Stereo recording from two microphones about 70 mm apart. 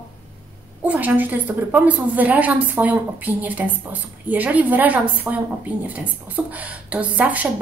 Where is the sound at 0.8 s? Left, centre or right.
Right.